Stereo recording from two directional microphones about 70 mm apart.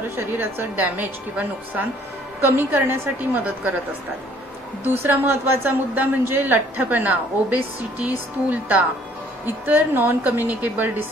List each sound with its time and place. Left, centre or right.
0.1 s a man's voice: right
4.9 s a man's voice: right